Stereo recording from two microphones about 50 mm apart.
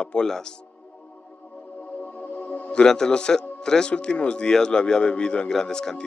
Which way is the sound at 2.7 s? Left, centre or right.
Centre.